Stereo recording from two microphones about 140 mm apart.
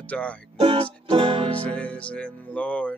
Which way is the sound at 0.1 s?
10° left (ahead or behind).